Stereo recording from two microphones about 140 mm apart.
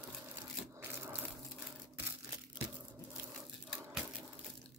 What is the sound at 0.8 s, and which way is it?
Crushing, 15° right (ahead or behind).